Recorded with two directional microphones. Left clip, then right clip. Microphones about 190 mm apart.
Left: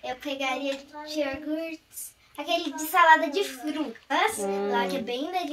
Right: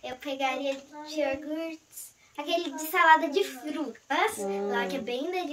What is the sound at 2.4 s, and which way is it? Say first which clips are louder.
A child's voice: left 2 dB; 25° right (ahead or behind).